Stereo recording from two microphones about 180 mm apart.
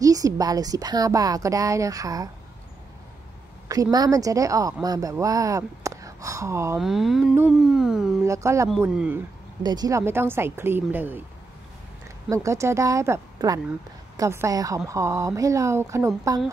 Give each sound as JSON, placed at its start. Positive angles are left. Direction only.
{"t": 0.0, "sound": "a woman's voice", "side_deg": -20}
{"t": 3.6, "sound": "a woman's voice", "side_deg": -20}
{"t": 6.8, "sound": "a sound", "side_deg": 0}
{"t": 8.2, "sound": "speech", "side_deg": -15}
{"t": 9.6, "sound": "speech", "side_deg": -25}
{"t": 12.3, "sound": "a woman's voice", "side_deg": -15}